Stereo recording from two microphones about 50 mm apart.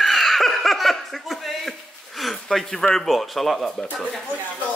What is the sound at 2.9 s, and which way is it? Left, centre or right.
Speech, centre.